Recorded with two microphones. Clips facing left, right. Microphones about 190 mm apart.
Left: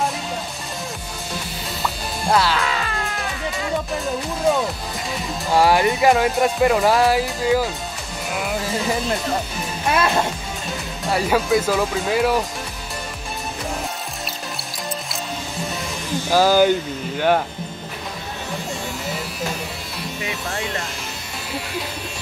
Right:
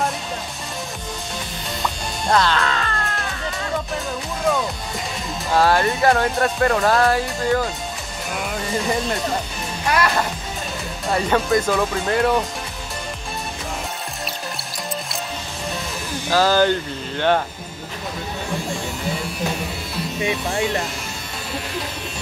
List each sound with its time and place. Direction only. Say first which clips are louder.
1.8 s music: even; 5° left (ahead or behind)
5.5 s speech: left 1 dB; 10° left (ahead or behind)
9.8 s speech: left 1 dB; 25° left (ahead or behind)
11.1 s speech: even; 5° left (ahead or behind)
16.3 s speech: left 2 dB; 10° left (ahead or behind)
20.2 s speech: right 6 dB; 25° right (ahead or behind)